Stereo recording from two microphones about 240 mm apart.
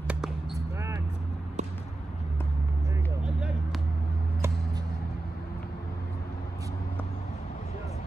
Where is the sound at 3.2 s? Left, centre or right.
Centre.